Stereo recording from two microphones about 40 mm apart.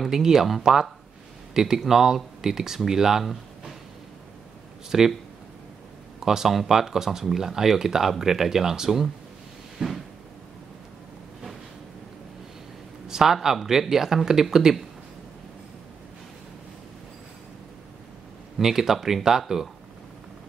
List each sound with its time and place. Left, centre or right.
0.0 s speech: centre
4.9 s speech: centre
6.1 s speech: centre
9.8 s a sound: centre
13.1 s speech: centre
18.6 s speech: centre